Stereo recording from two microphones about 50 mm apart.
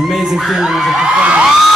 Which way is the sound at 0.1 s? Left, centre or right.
Centre.